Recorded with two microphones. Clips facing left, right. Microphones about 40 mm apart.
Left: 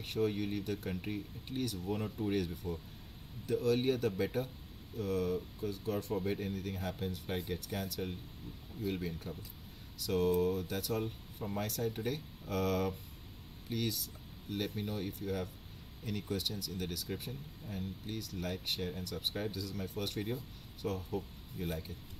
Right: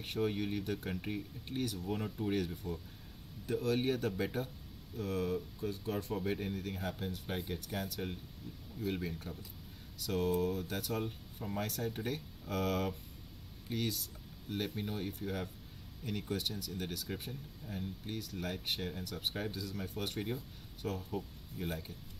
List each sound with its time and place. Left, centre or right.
0.0 s speech: centre
8.4 s speech: left
8.8 s speech: centre